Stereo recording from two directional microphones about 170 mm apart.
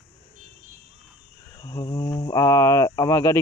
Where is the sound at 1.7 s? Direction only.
25° left (ahead or behind).